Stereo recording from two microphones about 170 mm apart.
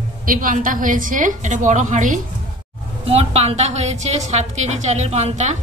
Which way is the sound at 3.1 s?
35° right (ahead or behind).